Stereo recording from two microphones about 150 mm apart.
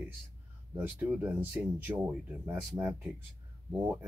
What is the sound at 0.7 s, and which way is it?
Speech, 10° right (ahead or behind).